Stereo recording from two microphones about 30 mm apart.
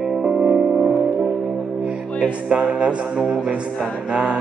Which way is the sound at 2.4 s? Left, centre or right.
Right.